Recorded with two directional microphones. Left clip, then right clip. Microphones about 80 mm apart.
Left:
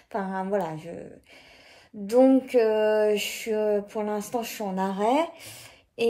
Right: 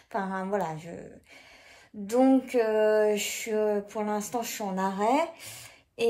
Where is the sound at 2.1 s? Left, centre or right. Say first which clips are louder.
Left 4 dB; left.